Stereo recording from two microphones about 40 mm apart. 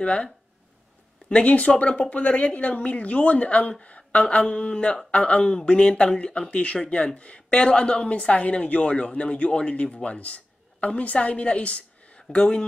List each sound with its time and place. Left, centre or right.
0.0 s a woman's voice: left
1.3 s a woman's voice: left